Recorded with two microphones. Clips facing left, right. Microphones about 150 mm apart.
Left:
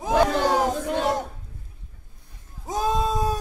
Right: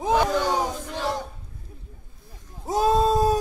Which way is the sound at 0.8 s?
55° left (ahead or behind).